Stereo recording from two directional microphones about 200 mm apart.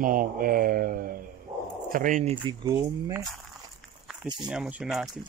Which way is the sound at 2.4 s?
15° right (ahead or behind).